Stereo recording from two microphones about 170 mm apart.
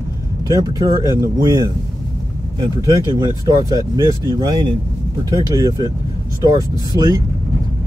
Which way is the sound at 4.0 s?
25° left (ahead or behind).